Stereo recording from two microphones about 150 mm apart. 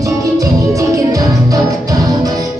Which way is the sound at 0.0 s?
20° right (ahead or behind).